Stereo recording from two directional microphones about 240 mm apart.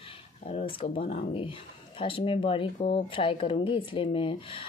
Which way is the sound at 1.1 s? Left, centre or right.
Left.